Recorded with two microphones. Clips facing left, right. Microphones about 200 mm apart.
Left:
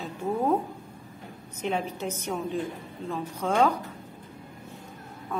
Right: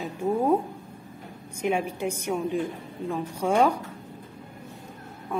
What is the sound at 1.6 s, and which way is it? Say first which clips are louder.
Speech: right 3 dB; 10° right (ahead or behind).